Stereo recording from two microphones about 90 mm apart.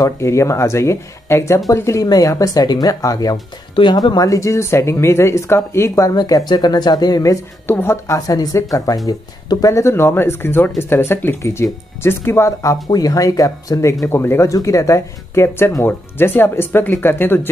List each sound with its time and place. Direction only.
0.0 s speech: 30° left (ahead or behind)
3.7 s speech: 55° left (ahead or behind); by 6.1 s 30° left (ahead or behind)
6.1 s speech: 50° left (ahead or behind)
7.6 s speech: 25° left (ahead or behind)
8.3 s speech: 45° left (ahead or behind)
12.8 s speech: 45° left (ahead or behind)
14.0 s speech: 25° left (ahead or behind)